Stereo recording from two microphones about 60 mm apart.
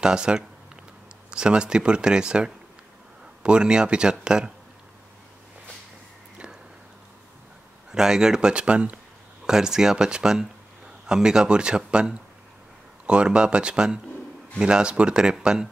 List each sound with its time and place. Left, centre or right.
0.0 s speech: centre
7.9 s speech: centre
9.5 s speech: centre